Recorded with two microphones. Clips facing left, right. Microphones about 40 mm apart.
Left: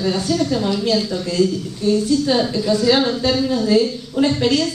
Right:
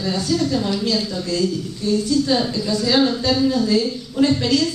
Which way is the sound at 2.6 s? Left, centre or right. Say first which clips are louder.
Left 4 dB; left.